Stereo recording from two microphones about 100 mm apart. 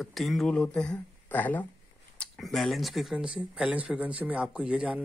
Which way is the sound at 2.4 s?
Centre (ahead or behind).